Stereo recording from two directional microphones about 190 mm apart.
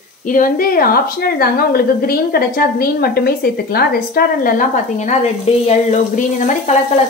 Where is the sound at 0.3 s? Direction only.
45° left (ahead or behind).